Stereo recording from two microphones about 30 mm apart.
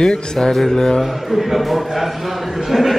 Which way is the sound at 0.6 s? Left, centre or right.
Centre.